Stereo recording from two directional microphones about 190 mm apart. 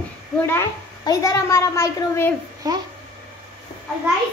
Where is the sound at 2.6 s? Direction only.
20° right (ahead or behind).